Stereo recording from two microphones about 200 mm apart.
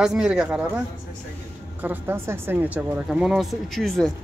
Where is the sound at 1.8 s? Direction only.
10° right (ahead or behind).